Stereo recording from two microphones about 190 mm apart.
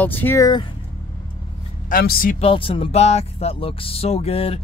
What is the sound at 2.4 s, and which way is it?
Speech, 30° left (ahead or behind).